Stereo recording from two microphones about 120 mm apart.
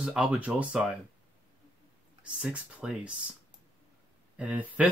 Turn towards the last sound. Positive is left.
turn(degrees=-10)  # may be behind; listen again after turning